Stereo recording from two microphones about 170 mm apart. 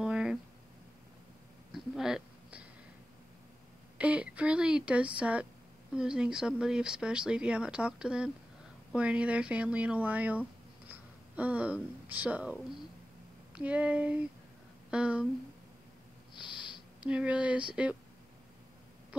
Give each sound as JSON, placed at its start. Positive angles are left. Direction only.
{"t": 0.0, "sound": "a sound", "side_deg": -5}
{"t": 1.7, "sound": "a sound", "side_deg": -5}
{"t": 4.0, "sound": "speech", "side_deg": -5}
{"t": 13.6, "sound": "speech", "side_deg": -5}
{"t": 16.3, "sound": "sniff", "side_deg": 30}
{"t": 17.0, "sound": "speech", "side_deg": -5}